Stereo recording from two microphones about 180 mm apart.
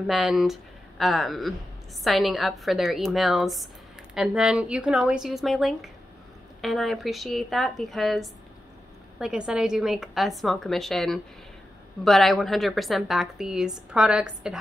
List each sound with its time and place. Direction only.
0.0 s a woman's voice: centre (ahead or behind)